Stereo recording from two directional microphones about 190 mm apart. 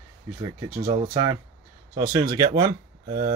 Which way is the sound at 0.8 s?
25° right (ahead or behind).